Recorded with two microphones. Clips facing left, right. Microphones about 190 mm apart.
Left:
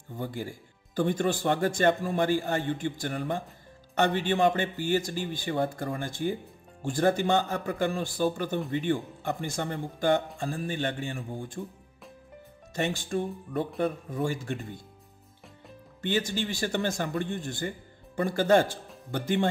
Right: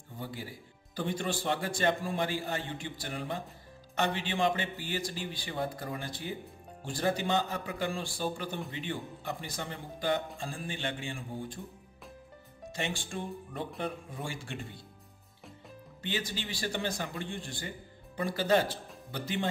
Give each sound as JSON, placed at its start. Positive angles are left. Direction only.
{"t": 0.2, "sound": "speech", "side_deg": 45}
{"t": 12.7, "sound": "speech", "side_deg": 45}
{"t": 16.0, "sound": "speech", "side_deg": 50}